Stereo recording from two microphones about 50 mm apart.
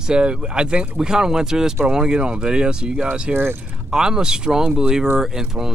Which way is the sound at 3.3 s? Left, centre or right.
Right.